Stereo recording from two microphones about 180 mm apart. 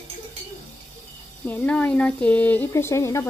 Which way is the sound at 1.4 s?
10° left (ahead or behind).